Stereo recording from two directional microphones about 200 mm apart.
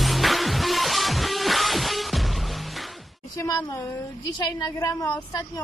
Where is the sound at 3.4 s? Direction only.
20° left (ahead or behind).